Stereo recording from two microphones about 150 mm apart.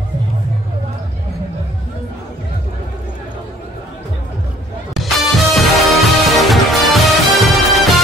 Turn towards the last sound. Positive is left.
turn(degrees=0)  # may be behind; listen again after turning